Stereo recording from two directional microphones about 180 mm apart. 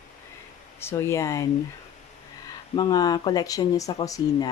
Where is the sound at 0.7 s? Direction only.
15° left (ahead or behind).